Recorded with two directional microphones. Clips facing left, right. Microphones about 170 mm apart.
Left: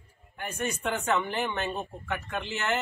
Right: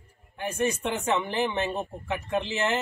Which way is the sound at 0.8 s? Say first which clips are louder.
Right 1 dB; 20° right (ahead or behind).